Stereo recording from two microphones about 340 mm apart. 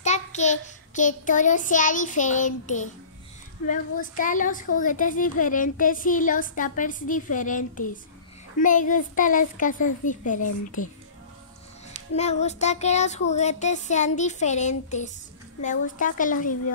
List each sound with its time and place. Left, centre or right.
0.0 s a child's voice: centre
12.2 s speech: centre